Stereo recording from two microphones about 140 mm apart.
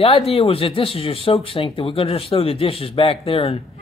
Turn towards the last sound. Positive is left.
turn(degrees=45)  # may be behind; listen again after turning